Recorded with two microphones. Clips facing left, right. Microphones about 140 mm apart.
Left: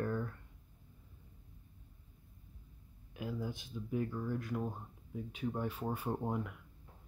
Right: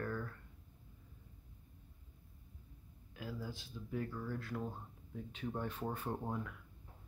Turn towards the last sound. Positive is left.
turn(degrees=15)  # may be behind; listen again after turning